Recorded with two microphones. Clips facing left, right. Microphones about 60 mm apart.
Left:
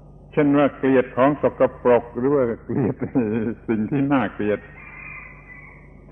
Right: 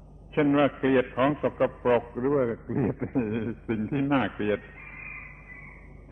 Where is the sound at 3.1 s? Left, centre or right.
Centre.